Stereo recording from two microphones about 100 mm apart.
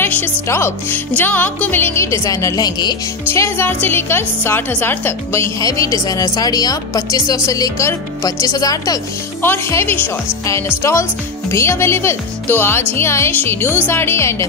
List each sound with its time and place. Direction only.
0.0 s speech: 20° left (ahead or behind); by 3.0 s 45° left (ahead or behind)
3.3 s a woman's voice: 25° left (ahead or behind)
9.4 s speech: 25° left (ahead or behind)